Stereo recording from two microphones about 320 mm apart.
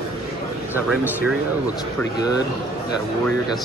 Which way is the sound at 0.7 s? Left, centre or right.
Centre.